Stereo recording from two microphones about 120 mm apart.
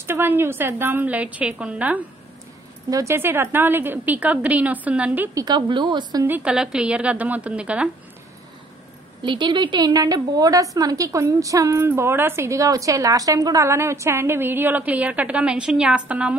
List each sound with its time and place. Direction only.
0.0 s a woman's voice: 20° right (ahead or behind)
2.9 s a woman's voice: 25° right (ahead or behind)
5.3 s a woman's voice: 35° right (ahead or behind)
6.2 s a woman's voice: 10° right (ahead or behind)
9.2 s a woman's voice: 40° right (ahead or behind); by 16.3 s 10° right (ahead or behind)